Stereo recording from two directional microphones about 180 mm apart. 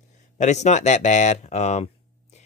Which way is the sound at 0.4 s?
40° left (ahead or behind).